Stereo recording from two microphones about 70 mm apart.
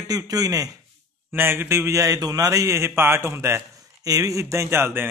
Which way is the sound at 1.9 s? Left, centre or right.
Right.